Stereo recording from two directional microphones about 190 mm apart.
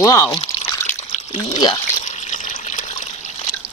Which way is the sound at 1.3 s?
30° left (ahead or behind).